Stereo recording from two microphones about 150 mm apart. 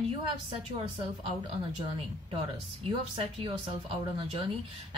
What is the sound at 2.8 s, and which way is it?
Speech, 35° right (ahead or behind).